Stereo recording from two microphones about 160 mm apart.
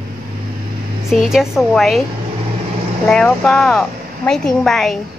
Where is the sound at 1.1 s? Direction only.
Centre (ahead or behind).